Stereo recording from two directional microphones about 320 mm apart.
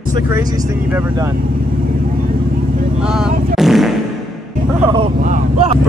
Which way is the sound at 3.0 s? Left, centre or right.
Centre.